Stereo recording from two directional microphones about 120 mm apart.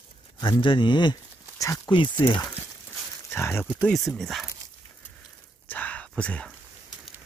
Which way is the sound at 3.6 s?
10° right (ahead or behind).